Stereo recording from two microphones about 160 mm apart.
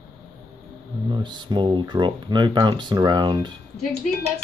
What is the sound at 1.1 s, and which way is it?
Speech, 30° right (ahead or behind).